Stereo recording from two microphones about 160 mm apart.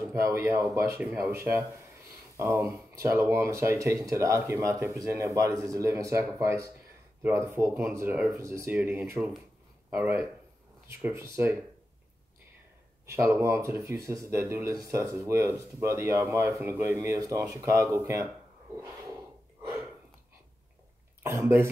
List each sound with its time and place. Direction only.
0.0 s speech: 20° right (ahead or behind)
2.3 s speech: 15° right (ahead or behind)
13.0 s speech: 15° right (ahead or behind)
21.2 s speech: 15° right (ahead or behind)